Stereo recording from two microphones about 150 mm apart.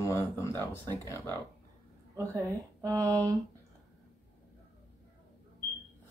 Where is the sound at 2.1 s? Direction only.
20° right (ahead or behind).